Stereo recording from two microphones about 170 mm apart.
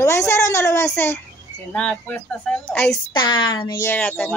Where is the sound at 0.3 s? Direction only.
15° left (ahead or behind).